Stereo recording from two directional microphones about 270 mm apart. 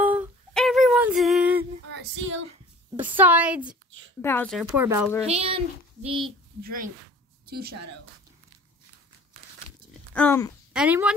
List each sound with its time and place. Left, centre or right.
0.0 s music: centre
2.0 s female singing: right
3.0 s a woman's voice: centre
4.2 s speech: centre
5.2 s speech: right
6.6 s a woman's voice: right
10.1 s speech: centre
10.7 s speech: centre